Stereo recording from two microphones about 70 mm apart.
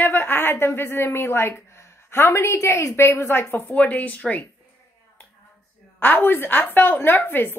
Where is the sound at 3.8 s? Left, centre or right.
Left.